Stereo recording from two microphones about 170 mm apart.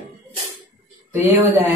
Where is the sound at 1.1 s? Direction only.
10° right (ahead or behind).